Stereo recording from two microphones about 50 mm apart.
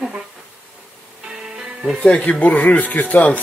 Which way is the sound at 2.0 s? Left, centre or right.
Left.